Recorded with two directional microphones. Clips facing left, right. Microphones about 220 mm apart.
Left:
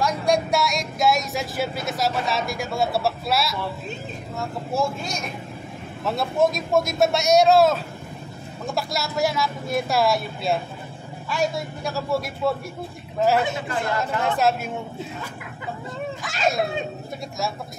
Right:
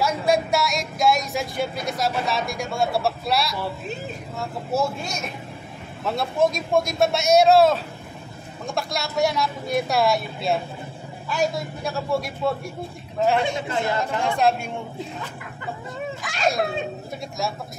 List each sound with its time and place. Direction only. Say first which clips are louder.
0.0 s speech: even; 5° right (ahead or behind)
6.0 s speech: even; centre (ahead or behind)
13.7 s speech: right 2 dB; 25° right (ahead or behind)
14.2 s speech: right 1 dB; 5° left (ahead or behind)
16.2 s speech: even; centre (ahead or behind)